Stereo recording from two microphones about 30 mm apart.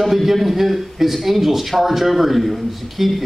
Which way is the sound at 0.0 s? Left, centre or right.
Centre.